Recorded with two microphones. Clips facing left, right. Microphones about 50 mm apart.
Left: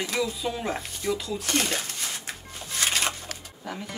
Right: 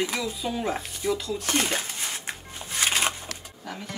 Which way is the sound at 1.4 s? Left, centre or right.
Centre.